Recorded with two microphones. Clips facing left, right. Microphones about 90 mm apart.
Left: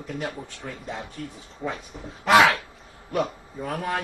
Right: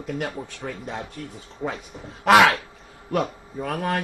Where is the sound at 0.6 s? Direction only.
60° right (ahead or behind).